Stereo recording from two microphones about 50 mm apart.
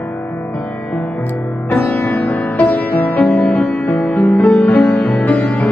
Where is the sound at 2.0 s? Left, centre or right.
Left.